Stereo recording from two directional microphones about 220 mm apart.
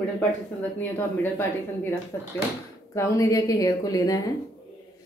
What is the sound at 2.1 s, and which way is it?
A woman's voice, 15° left (ahead or behind).